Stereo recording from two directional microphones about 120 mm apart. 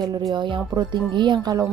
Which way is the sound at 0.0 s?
35° right (ahead or behind).